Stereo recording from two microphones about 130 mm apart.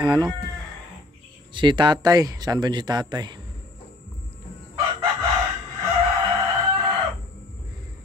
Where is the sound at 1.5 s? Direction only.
35° right (ahead or behind).